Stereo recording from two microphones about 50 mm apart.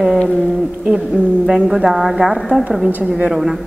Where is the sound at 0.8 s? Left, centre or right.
Centre.